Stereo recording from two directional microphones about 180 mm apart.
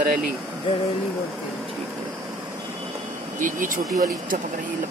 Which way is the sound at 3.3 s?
45° right (ahead or behind).